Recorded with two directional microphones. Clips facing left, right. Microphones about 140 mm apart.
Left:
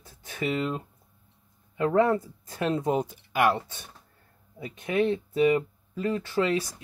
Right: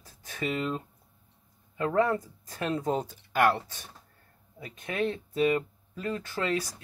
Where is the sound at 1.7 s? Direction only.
25° left (ahead or behind).